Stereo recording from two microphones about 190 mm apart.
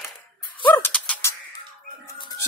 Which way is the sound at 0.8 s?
5° left (ahead or behind).